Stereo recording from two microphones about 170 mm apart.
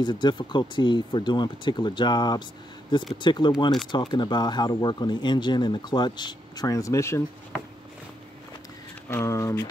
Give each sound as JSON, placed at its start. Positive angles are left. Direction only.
{"t": 0.0, "sound": "speech", "side_deg": 25}
{"t": 9.1, "sound": "speech", "side_deg": 15}